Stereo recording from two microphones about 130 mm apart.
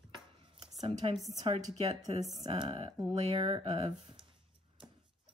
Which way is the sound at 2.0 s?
30° right (ahead or behind).